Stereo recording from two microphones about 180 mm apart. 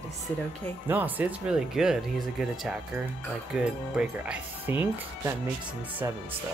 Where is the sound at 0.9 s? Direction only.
10° right (ahead or behind).